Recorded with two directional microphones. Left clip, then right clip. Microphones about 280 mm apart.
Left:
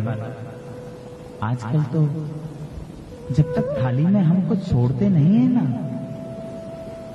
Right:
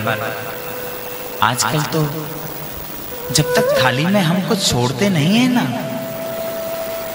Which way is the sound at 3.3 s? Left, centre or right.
Centre.